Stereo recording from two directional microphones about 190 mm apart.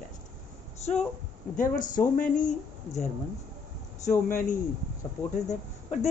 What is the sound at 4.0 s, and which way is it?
A man's voice, 40° left (ahead or behind).